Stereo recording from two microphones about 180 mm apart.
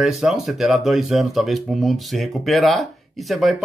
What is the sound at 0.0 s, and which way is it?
Speech, centre (ahead or behind).